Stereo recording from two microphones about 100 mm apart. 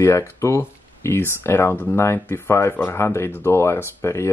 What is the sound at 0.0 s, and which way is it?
Speech, 30° left (ahead or behind).